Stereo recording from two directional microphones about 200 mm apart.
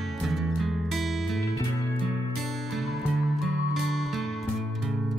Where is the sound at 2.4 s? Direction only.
Centre (ahead or behind).